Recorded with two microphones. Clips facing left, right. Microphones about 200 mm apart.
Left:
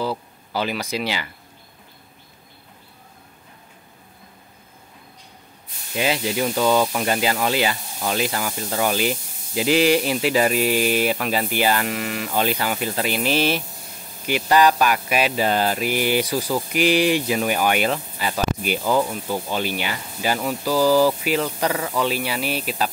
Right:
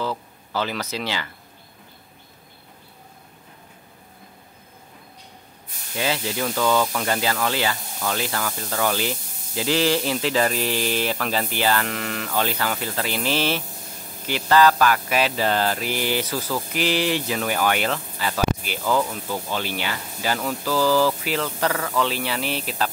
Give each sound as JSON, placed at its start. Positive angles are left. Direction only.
{"t": 0.0, "sound": "speech", "side_deg": 10}
{"t": 5.9, "sound": "speech", "side_deg": 15}